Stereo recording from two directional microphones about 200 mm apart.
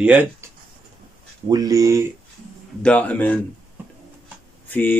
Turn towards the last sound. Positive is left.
turn(degrees=10)  # may be behind; listen again after turning